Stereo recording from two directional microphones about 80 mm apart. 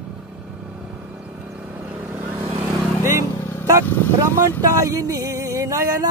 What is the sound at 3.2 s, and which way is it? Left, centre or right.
Vehicle, left.